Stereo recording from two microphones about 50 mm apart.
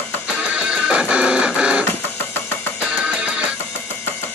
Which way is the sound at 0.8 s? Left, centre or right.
Right.